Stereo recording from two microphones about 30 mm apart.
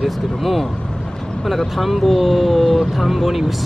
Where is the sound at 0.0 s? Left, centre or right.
Centre.